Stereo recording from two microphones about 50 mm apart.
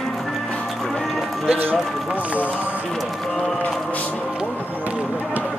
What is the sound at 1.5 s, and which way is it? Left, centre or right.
Speech, right.